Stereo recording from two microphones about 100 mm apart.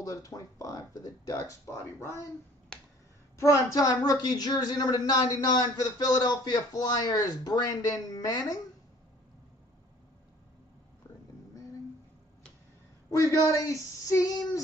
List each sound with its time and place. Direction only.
0.0 s speech: 35° left (ahead or behind)
2.7 s finger snapping: 10° left (ahead or behind)
3.3 s speech: 35° left (ahead or behind)
13.1 s speech: 30° left (ahead or behind)